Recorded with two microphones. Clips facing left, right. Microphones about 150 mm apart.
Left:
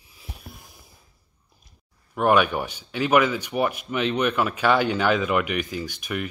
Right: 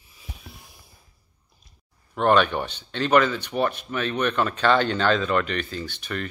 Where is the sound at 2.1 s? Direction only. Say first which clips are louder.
Even; 10° left (ahead or behind).